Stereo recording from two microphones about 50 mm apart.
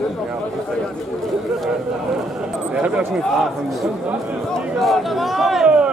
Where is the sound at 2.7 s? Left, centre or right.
Right.